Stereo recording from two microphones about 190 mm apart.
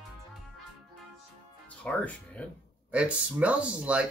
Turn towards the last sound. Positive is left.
turn(degrees=-5)  # may be behind; listen again after turning